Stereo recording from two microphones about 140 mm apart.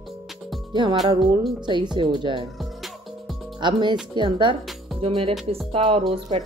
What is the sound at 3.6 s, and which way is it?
Speech, 35° right (ahead or behind).